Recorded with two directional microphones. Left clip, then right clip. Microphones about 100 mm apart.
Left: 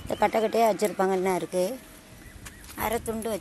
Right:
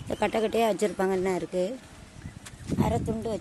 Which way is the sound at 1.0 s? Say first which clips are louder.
Left 2 dB; 25° right (ahead or behind).